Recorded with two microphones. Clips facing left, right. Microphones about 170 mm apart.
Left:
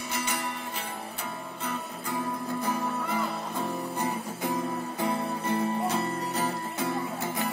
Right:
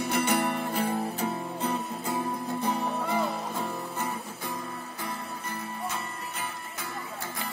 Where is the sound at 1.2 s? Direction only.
30° right (ahead or behind).